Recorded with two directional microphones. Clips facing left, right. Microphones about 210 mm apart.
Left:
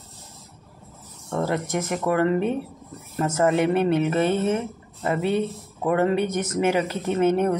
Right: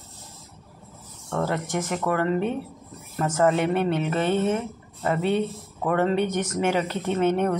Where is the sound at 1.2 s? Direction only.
20° left (ahead or behind).